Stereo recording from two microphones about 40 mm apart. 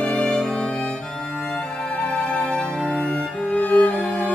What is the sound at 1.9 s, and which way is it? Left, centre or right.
Music, left.